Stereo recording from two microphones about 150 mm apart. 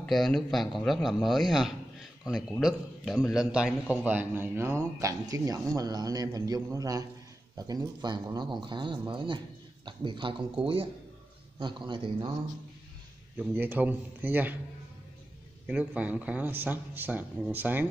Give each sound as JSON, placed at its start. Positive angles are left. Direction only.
{"t": 0.0, "sound": "a man's voice", "side_deg": 5}
{"t": 13.4, "sound": "speech", "side_deg": -10}
{"t": 15.6, "sound": "speech", "side_deg": -10}